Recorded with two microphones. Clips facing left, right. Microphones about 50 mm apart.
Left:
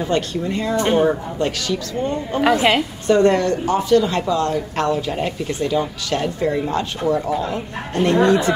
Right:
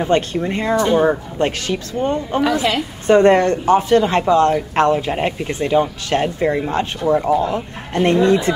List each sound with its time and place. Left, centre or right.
0.0 s speech: right
2.4 s a woman's voice: left
3.1 s speech: right
8.2 s speech: left